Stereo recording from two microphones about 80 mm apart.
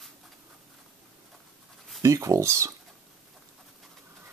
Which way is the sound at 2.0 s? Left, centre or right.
Right.